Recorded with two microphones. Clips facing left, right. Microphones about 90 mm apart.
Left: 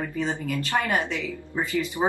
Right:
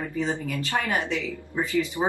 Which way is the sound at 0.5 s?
20° left (ahead or behind).